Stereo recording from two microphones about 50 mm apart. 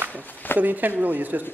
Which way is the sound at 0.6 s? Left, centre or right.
Right.